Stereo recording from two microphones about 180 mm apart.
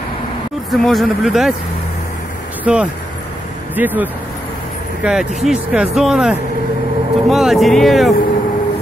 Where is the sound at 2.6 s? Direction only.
5° right (ahead or behind).